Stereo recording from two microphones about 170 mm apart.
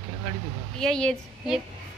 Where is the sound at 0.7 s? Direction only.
5° left (ahead or behind).